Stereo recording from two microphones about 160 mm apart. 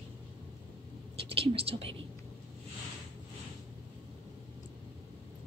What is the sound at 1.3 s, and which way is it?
Speech, 35° right (ahead or behind).